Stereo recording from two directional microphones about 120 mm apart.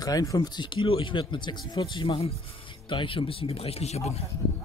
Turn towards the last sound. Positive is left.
turn(degrees=65)  # may be behind; listen again after turning